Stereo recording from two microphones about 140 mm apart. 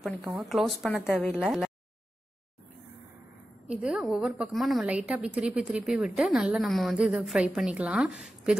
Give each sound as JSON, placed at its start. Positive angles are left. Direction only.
{"t": 0.4, "sound": "a woman's voice", "side_deg": 0}
{"t": 3.6, "sound": "a woman's voice", "side_deg": -5}